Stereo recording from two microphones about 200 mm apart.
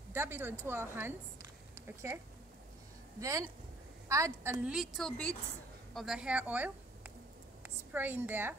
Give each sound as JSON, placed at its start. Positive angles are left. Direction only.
{"t": 0.1, "sound": "a woman's voice", "side_deg": -10}
{"t": 3.2, "sound": "a woman's voice", "side_deg": -15}